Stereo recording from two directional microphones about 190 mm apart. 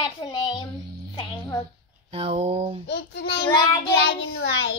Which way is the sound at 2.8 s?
60° left (ahead or behind).